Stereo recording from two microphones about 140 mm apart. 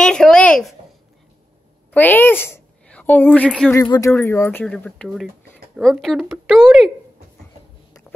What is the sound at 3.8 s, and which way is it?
Speech, 30° left (ahead or behind).